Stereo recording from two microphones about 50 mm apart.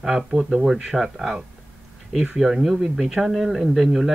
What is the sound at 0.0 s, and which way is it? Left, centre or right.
Speech, centre.